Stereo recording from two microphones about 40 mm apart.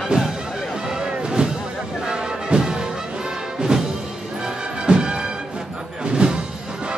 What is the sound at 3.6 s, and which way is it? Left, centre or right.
Music, centre.